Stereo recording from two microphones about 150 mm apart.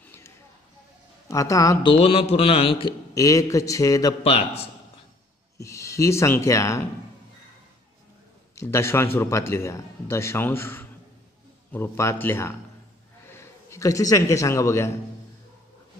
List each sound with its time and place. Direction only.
0.0 s a sound: 15° left (ahead or behind)
1.3 s speech: 20° left (ahead or behind)
1.9 s a man's voice: 40° left (ahead or behind)
3.2 s speech: 20° left (ahead or behind)
4.2 s a man's voice: 40° left (ahead or behind)
5.6 s speech: 20° left (ahead or behind)
8.5 s a man's voice: 15° left (ahead or behind)